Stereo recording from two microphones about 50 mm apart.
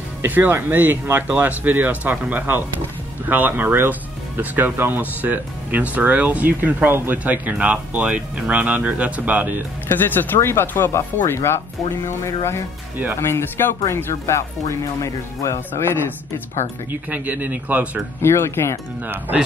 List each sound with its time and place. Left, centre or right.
0.2 s speech: right
9.8 s speech: left
10.7 s speech: left
13.2 s speech: left
14.2 s speech: left
15.7 s speech: left
17.1 s speech: right
18.2 s speech: left
19.0 s speech: right